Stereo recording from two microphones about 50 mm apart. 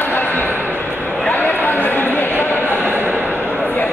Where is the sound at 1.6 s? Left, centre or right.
Left.